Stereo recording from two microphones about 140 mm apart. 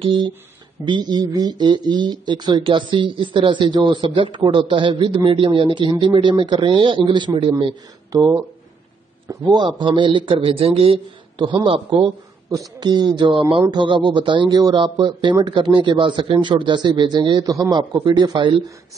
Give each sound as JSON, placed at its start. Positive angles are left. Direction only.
{"t": 0.0, "sound": "speech", "side_deg": -35}
{"t": 8.1, "sound": "speech", "side_deg": -25}
{"t": 11.9, "sound": "speech", "side_deg": -25}